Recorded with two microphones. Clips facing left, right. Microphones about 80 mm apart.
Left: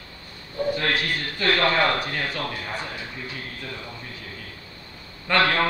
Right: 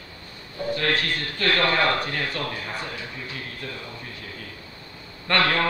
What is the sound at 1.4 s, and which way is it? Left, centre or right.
Speech, centre.